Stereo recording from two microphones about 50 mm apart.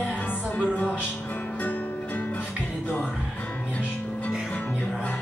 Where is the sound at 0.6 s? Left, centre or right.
Left.